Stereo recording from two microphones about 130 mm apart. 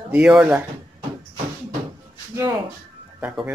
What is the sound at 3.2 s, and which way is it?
Speech, 10° right (ahead or behind).